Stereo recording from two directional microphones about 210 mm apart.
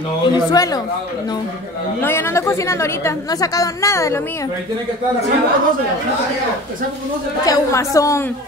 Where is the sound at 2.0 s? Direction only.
10° left (ahead or behind).